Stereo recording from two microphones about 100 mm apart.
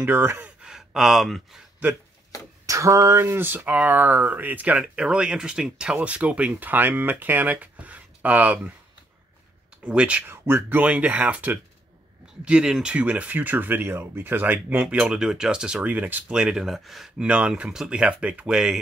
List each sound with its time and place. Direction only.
0.0 s speech: 20° right (ahead or behind)
0.6 s speech: 5° right (ahead or behind)
2.6 s speech: 30° right (ahead or behind); by 8.7 s 15° right (ahead or behind)
9.8 s speech: 10° right (ahead or behind)
10.3 s speech: 25° right (ahead or behind); by 17.1 s centre (ahead or behind)
17.2 s speech: 10° right (ahead or behind)